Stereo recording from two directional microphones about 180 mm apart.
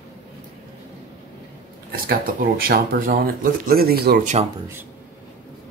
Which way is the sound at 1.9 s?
55° right (ahead or behind).